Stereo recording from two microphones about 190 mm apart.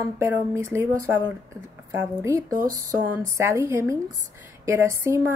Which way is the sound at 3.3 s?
15° right (ahead or behind).